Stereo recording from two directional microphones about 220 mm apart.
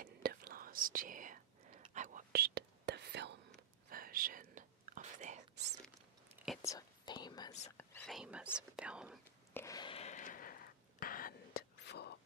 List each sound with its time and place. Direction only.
0.0 s whispering: 45° right (ahead or behind)
6.3 s whispering: centre (ahead or behind)
6.6 s whispering: 15° left (ahead or behind)
8.1 s whispering: 5° right (ahead or behind)
8.5 s speech: 5° right (ahead or behind)
9.5 s a sound: 10° left (ahead or behind); by 12.2 s 50° left (ahead or behind)